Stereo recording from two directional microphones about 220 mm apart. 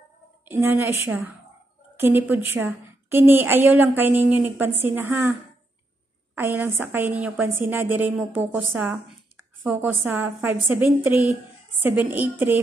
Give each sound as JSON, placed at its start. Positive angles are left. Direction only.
{"t": 0.5, "sound": "a woman's voice", "side_deg": -10}
{"t": 6.3, "sound": "a woman's voice", "side_deg": -10}